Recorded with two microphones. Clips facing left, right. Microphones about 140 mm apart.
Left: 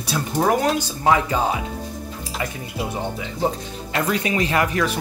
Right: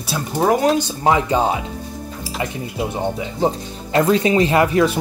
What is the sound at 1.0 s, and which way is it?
Speech, 25° right (ahead or behind).